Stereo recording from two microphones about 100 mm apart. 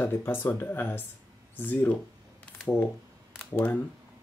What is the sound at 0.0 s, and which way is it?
Speech, 20° left (ahead or behind).